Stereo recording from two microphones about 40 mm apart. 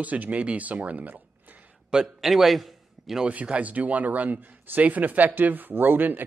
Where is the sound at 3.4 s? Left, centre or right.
Right.